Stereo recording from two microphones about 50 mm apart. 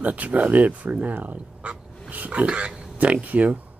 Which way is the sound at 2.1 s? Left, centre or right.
Right.